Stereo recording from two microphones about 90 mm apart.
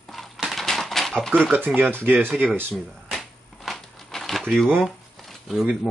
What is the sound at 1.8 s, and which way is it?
Speech, 20° right (ahead or behind).